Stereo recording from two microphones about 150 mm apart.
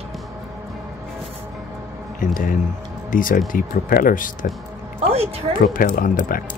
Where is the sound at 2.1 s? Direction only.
65° left (ahead or behind).